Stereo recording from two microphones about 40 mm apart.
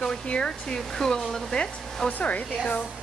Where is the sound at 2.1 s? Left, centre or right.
Left.